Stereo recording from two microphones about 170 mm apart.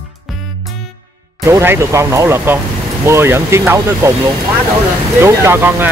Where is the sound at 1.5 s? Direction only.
15° right (ahead or behind).